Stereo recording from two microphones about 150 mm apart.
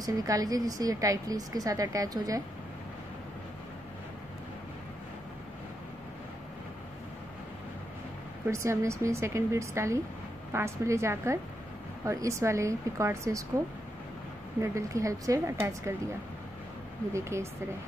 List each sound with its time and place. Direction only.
0.0 s a woman's voice: 25° right (ahead or behind)
8.5 s a woman's voice: 20° right (ahead or behind)
14.6 s a woman's voice: 20° right (ahead or behind)
17.1 s a woman's voice: 20° right (ahead or behind)